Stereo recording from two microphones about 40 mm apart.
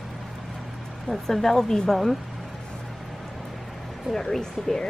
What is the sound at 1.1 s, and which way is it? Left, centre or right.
Speech, centre.